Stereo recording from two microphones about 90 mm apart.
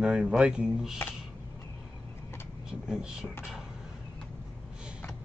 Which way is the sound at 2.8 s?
10° right (ahead or behind).